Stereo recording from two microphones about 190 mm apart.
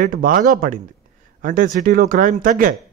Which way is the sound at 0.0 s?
45° right (ahead or behind).